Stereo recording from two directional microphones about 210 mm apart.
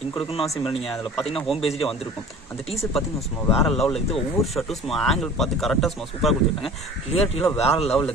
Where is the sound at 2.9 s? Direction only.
Centre (ahead or behind).